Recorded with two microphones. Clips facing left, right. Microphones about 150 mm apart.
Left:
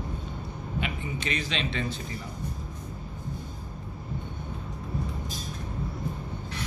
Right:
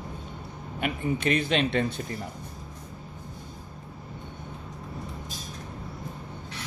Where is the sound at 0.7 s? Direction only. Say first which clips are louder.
Right 5 dB; 50° right (ahead or behind).